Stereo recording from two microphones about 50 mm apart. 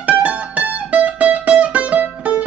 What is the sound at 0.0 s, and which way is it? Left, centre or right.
Music, right.